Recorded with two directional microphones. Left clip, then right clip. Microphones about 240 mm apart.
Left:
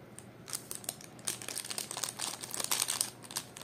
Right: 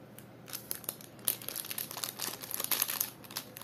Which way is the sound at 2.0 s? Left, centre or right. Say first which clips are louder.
Left 1 dB; centre.